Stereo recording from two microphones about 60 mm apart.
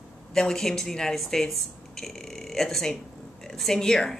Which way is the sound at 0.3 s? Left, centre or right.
Centre.